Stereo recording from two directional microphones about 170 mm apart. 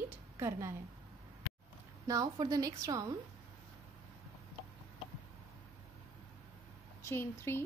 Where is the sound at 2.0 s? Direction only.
20° right (ahead or behind).